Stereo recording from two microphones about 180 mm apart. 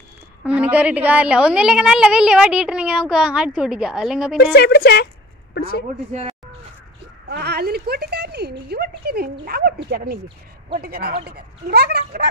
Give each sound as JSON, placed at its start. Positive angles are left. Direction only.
{"t": 0.4, "sound": "a woman's voice", "side_deg": -5}
{"t": 4.6, "sound": "speech", "side_deg": 60}
{"t": 7.2, "sound": "speech", "side_deg": -60}